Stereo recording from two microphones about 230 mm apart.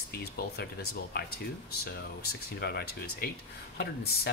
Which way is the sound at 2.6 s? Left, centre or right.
Left.